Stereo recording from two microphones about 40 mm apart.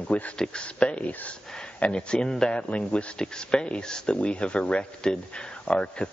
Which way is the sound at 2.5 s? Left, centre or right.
Left.